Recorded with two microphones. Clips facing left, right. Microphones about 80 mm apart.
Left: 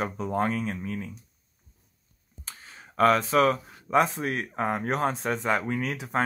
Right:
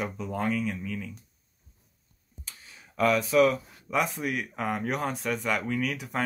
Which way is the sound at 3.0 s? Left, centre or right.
Left.